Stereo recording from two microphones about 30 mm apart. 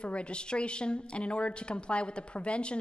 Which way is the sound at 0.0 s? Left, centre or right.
Left.